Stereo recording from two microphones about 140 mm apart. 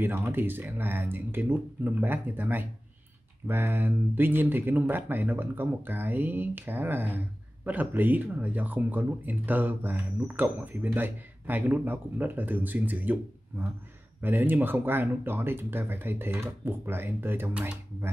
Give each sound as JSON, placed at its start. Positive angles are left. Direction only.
{"t": 0.0, "sound": "speech", "side_deg": -15}